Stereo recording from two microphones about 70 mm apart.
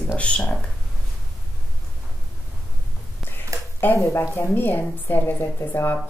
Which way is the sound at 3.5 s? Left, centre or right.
Right.